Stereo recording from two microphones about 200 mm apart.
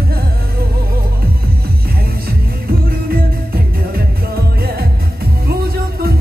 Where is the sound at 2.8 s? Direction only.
45° right (ahead or behind).